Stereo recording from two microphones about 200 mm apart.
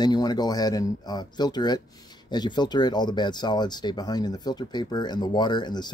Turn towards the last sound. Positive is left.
turn(degrees=20)  # may be behind; listen again after turning